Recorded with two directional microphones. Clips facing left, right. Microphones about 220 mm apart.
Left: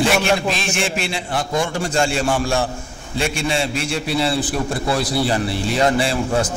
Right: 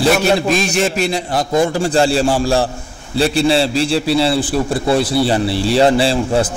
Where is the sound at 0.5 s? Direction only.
40° right (ahead or behind).